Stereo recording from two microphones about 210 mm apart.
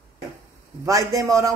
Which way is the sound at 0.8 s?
15° right (ahead or behind).